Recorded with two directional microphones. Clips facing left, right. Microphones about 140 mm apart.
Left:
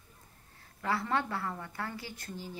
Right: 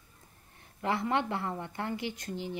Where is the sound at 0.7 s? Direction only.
20° right (ahead or behind).